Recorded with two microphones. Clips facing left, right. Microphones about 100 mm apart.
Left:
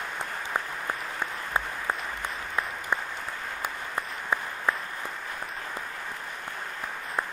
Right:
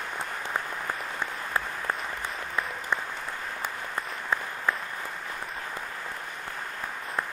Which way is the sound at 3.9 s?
15° left (ahead or behind).